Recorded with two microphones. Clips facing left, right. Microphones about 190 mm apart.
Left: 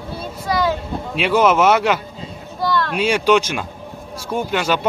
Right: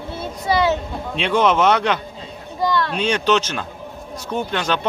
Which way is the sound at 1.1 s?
5° left (ahead or behind).